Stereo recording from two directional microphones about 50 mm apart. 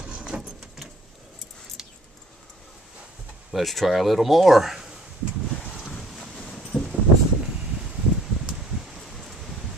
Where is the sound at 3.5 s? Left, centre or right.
Centre.